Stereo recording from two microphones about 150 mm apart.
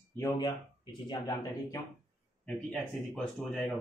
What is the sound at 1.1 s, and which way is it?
Speech, 20° left (ahead or behind).